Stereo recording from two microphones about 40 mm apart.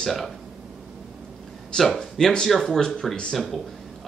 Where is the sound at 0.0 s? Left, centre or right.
Centre.